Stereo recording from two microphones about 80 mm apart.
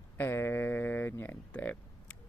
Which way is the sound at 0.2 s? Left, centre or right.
Left.